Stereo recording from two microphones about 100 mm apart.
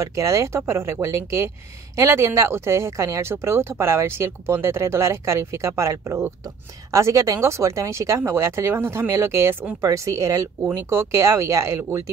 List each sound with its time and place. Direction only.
0.0 s speech: 30° right (ahead or behind)